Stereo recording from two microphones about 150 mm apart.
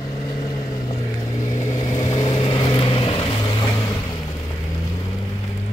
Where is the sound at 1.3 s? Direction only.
55° left (ahead or behind); by 4.0 s 30° left (ahead or behind).